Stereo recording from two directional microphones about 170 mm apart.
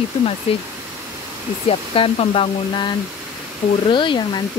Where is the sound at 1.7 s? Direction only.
35° left (ahead or behind).